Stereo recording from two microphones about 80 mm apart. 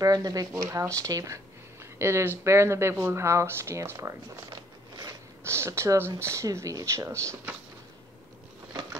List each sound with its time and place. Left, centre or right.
0.0 s speech: right
0.5 s speech: right